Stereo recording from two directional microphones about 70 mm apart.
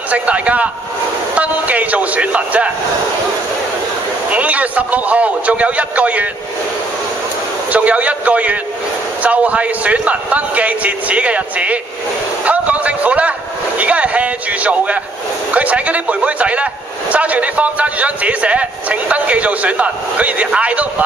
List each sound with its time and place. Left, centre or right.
0.1 s a man's voice: centre
4.3 s a man's voice: right
7.7 s a man's voice: right
12.4 s a sound: right
13.7 s a man's voice: centre